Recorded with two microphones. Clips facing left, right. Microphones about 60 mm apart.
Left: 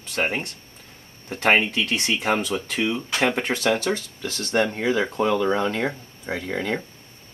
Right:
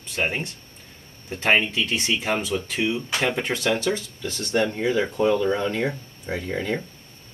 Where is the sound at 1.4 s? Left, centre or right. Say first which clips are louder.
Left 1 dB; left.